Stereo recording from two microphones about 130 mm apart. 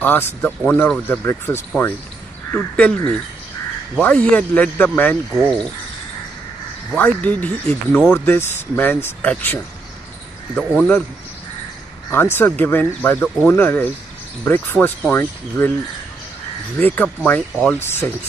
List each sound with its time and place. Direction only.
0.0 s speech: 15° left (ahead or behind)
2.5 s speech: 10° left (ahead or behind)
4.0 s speech: 10° left (ahead or behind)
7.0 s speech: 10° left (ahead or behind)
12.1 s speech: 15° left (ahead or behind)
16.8 s speech: 15° left (ahead or behind)